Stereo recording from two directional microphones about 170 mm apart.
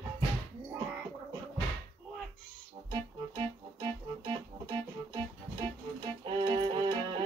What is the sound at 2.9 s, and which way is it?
Music, 25° right (ahead or behind).